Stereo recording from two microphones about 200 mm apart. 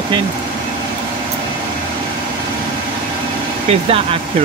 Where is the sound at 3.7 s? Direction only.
35° right (ahead or behind).